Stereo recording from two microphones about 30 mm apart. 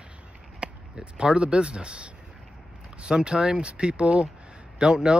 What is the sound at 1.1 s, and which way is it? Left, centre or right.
Speech, right.